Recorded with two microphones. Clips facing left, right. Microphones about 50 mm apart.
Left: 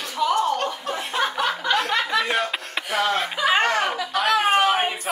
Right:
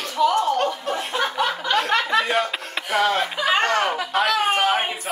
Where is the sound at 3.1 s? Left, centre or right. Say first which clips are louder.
Even; centre.